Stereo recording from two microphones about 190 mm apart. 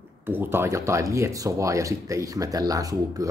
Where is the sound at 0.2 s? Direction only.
10° right (ahead or behind).